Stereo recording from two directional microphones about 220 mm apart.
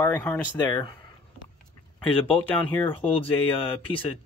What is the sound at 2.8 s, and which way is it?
Speech, 25° left (ahead or behind).